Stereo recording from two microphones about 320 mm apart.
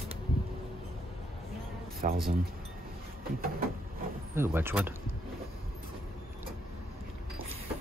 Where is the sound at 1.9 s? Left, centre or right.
Right.